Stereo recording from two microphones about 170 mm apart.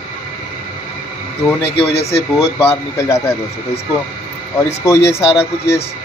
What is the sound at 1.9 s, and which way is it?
Speech, 35° left (ahead or behind).